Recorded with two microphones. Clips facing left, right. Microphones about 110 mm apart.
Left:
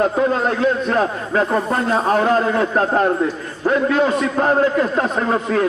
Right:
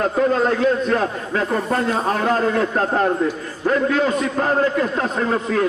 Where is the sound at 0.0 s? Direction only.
40° left (ahead or behind).